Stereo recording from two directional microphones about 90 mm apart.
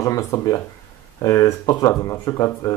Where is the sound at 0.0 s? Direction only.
35° left (ahead or behind).